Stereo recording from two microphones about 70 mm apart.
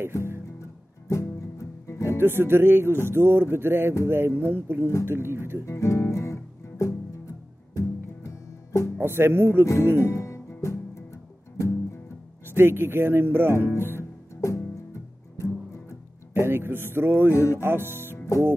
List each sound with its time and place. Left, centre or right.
1.0 s music: left
2.1 s speech: right
5.7 s guitar: left
7.7 s music: left
9.0 s speech: right
10.0 s music: left
12.4 s speech: right
13.7 s speech: left
14.3 s music: left
16.3 s speech: right
17.3 s music: left
17.6 s speech: right
18.1 s music: left